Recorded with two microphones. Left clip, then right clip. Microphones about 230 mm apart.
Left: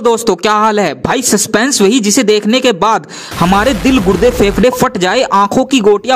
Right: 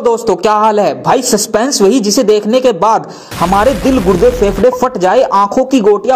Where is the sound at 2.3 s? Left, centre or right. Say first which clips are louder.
Right 1 dB; left.